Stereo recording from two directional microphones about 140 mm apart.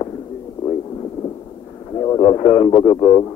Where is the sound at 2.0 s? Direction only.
25° left (ahead or behind).